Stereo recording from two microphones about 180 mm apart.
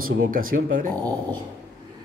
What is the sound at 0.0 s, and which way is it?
Speech, 50° right (ahead or behind).